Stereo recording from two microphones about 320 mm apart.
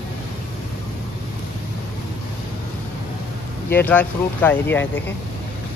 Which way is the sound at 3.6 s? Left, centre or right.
Centre.